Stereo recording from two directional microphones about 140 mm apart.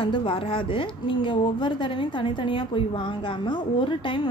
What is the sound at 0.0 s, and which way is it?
A woman's voice, 40° left (ahead or behind).